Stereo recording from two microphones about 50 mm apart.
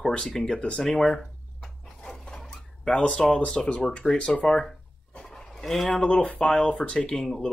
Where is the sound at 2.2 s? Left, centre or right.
Centre.